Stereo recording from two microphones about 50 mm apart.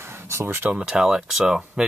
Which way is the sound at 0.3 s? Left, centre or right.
Right.